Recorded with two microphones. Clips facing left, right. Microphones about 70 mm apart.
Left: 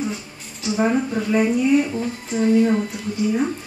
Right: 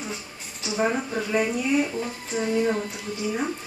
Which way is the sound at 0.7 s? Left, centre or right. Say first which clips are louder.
Left 5 dB; centre.